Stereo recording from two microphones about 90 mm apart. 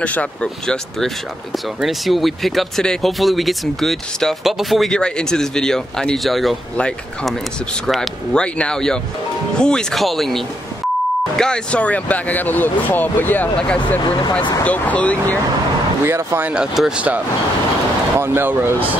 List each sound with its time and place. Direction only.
0.0 s speech: 15° left (ahead or behind)
7.8 s speech: centre (ahead or behind); by 15.3 s 15° left (ahead or behind)
16.1 s speech: 25° right (ahead or behind)
16.5 s speech: 5° right (ahead or behind)
18.2 s speech: 25° right (ahead or behind)